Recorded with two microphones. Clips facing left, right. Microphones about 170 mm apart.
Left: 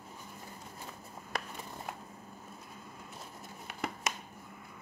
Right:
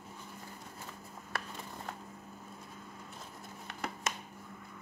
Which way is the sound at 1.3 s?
15° left (ahead or behind).